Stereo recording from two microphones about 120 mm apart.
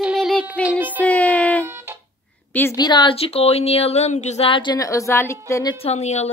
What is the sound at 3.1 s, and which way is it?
Speech, 55° left (ahead or behind).